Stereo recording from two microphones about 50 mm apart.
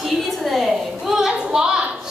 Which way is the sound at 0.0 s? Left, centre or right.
Centre.